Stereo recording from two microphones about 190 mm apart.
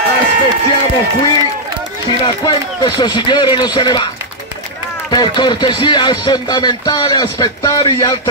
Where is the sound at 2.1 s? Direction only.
25° left (ahead or behind).